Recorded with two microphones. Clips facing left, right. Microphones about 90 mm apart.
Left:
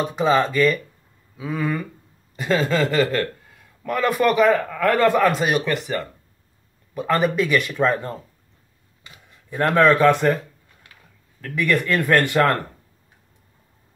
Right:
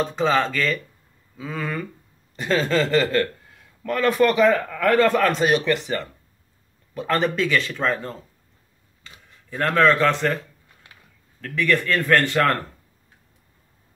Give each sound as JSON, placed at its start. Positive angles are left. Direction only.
{"t": 0.0, "sound": "a man's voice", "side_deg": 15}
{"t": 9.5, "sound": "speech", "side_deg": 15}
{"t": 11.4, "sound": "speech", "side_deg": 10}